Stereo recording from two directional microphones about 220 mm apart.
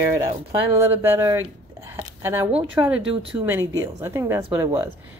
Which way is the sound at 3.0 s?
25° right (ahead or behind).